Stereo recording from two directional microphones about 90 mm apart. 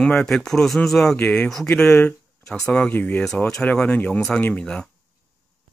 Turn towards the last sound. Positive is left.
turn(degrees=10)  # may be behind; listen again after turning